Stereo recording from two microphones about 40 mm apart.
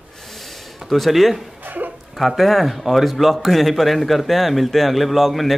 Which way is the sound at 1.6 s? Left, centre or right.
Right.